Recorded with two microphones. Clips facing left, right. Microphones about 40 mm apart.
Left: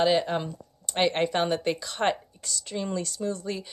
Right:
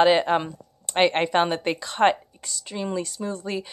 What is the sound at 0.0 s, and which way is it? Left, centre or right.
Speech, right.